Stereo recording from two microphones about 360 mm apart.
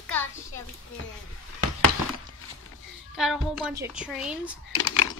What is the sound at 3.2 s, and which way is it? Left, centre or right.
A woman's voice, centre.